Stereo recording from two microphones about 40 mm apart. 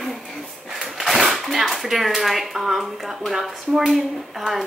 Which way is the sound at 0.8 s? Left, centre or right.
Centre.